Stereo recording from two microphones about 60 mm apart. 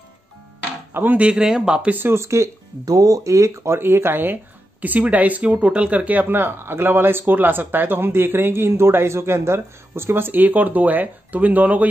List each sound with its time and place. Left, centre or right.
0.9 s speech: right
1.2 s speech: centre
2.0 s speech: right
2.2 s speech: right
2.8 s speech: right